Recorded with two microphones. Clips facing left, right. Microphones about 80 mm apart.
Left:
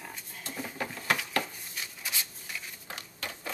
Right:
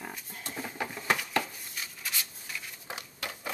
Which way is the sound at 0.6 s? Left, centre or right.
Centre.